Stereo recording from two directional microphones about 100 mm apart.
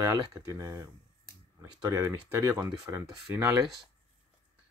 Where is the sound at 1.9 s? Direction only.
25° right (ahead or behind).